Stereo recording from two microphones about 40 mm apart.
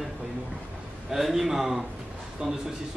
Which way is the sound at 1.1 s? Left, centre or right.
Centre.